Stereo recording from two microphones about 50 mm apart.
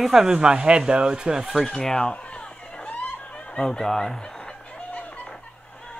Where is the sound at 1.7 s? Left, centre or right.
Centre.